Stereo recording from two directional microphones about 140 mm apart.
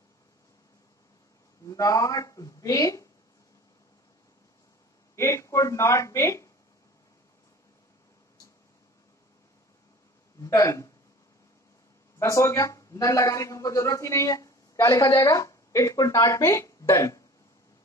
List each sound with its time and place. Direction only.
1.7 s a man's voice: 25° left (ahead or behind)
5.1 s speech: 20° left (ahead or behind)
10.4 s speech: 25° left (ahead or behind)
12.2 s a man's voice: 20° left (ahead or behind)